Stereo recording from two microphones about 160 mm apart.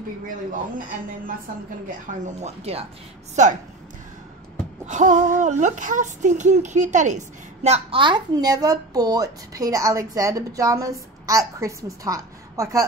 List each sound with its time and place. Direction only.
1.9 s speech: 50° right (ahead or behind)
4.8 s speech: 50° right (ahead or behind); by 12.8 s 20° right (ahead or behind)